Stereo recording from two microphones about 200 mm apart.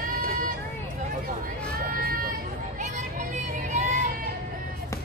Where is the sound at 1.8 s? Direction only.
45° right (ahead or behind).